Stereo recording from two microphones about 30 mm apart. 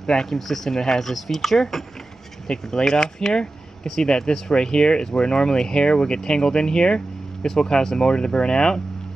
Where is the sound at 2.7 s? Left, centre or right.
Left.